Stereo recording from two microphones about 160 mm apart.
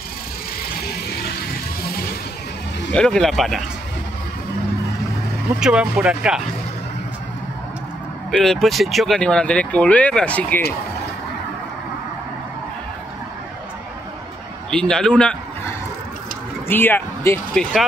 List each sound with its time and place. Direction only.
2.9 s speech: 5° left (ahead or behind)
5.6 s speech: 5° right (ahead or behind)
8.3 s speech: centre (ahead or behind)
14.7 s speech: 5° left (ahead or behind)
16.6 s speech: 10° left (ahead or behind)